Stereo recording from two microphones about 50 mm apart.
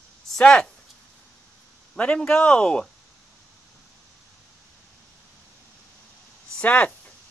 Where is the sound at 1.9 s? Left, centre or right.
Left.